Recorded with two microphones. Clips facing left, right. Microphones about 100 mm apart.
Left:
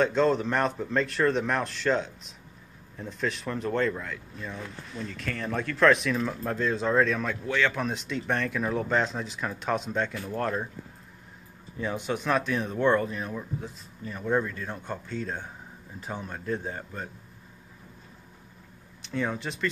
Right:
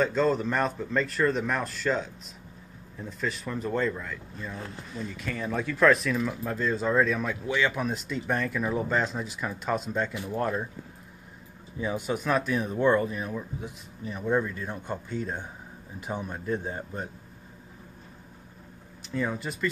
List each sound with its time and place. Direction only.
0.0 s speech: 5° right (ahead or behind)
11.8 s speech: 5° right (ahead or behind)
14.0 s speech: 15° right (ahead or behind)
19.0 s speech: 5° right (ahead or behind)